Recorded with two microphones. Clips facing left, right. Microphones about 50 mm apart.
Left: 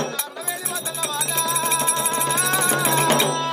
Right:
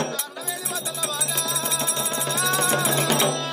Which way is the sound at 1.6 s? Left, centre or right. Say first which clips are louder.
Left 5 dB; left.